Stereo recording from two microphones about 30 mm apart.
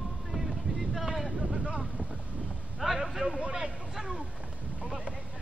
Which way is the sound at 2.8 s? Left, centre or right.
Centre.